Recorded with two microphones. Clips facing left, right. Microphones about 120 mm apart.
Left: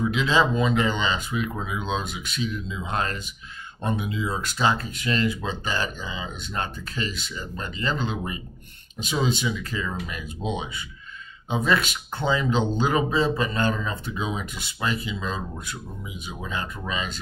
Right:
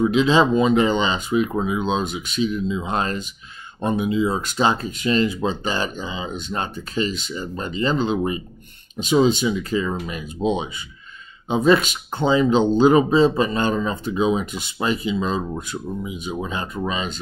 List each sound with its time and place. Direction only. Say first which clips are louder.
0.0 s speech: right 6 dB; 20° right (ahead or behind)